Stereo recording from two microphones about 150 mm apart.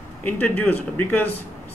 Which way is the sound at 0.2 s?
15° left (ahead or behind).